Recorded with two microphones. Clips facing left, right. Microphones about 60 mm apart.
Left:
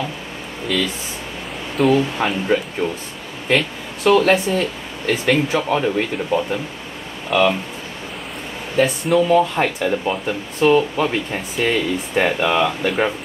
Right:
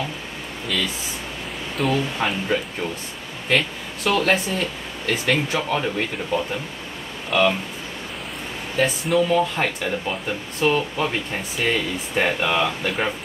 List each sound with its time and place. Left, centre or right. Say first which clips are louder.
0.7 s speech: left 4 dB; centre
8.7 s speech: left 4 dB; centre